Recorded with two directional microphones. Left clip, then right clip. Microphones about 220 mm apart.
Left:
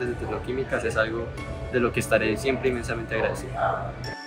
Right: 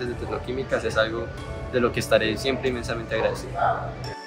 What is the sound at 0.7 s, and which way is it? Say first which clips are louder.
Speech: right 2 dB; 5° right (ahead or behind).